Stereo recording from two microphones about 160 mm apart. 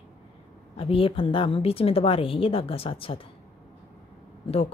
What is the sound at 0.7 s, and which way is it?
Speech, 35° left (ahead or behind).